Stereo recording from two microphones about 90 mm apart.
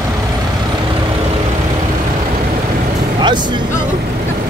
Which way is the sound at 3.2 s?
55° right (ahead or behind).